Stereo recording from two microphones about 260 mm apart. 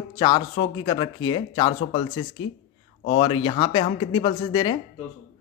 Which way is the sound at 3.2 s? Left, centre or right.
Centre.